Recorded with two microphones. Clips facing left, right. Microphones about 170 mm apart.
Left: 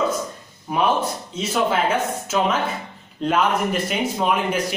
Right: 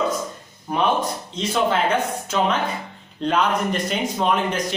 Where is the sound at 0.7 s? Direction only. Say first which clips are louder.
Even; 5° left (ahead or behind).